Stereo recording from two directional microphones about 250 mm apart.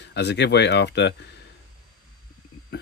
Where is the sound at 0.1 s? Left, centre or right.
Left.